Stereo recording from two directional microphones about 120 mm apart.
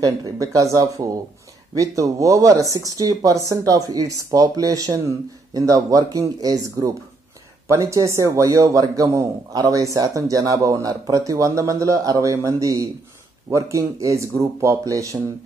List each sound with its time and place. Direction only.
0.0 s speech: 30° right (ahead or behind)